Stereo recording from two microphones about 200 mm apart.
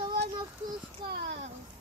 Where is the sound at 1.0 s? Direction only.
55° right (ahead or behind).